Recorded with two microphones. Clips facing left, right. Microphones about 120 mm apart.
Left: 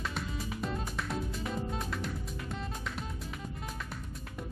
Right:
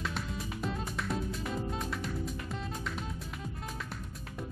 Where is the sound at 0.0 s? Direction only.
Centre (ahead or behind).